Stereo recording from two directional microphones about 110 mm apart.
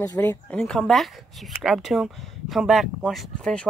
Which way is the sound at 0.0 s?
30° left (ahead or behind).